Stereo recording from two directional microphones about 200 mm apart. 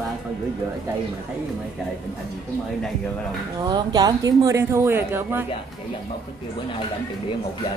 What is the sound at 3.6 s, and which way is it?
A woman's voice, 20° right (ahead or behind).